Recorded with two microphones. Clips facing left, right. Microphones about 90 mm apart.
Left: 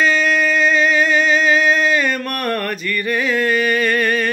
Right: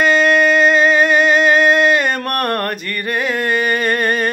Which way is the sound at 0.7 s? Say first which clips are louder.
Right 3 dB; 40° right (ahead or behind).